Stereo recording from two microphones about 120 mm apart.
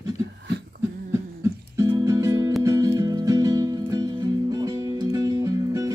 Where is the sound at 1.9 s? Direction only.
25° right (ahead or behind).